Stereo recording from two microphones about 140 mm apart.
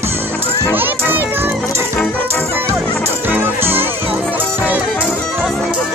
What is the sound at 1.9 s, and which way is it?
Music, 10° left (ahead or behind).